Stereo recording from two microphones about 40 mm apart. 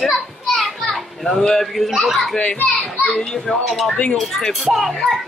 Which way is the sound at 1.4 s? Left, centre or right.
Centre.